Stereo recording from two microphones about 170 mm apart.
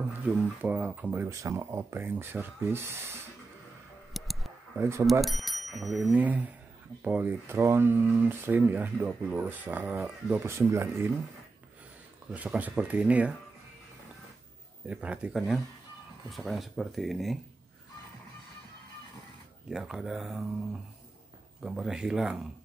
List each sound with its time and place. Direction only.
0.2 s speech: 10° right (ahead or behind)
4.1 s tick: centre (ahead or behind)
4.7 s speech: 15° right (ahead or behind)
5.2 s speech: centre (ahead or behind)
12.3 s speech: 5° right (ahead or behind)
14.9 s speech: 5° right (ahead or behind)
19.7 s speech: centre (ahead or behind)
21.6 s speech: 5° right (ahead or behind)